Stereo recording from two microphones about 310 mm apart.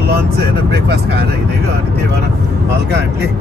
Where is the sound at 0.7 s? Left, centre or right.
Right.